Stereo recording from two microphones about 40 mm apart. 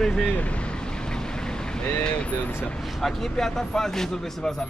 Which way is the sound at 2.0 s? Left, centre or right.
Left.